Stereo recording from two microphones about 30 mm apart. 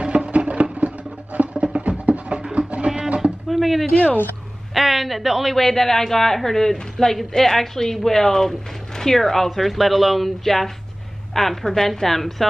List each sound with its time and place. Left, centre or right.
0.0 s music: right
1.9 s music: right
2.9 s music: centre
3.4 s a sound: centre
3.9 s a woman's voice: left
4.7 s speech: centre
5.6 s a woman's voice: centre
9.7 s a woman's voice: centre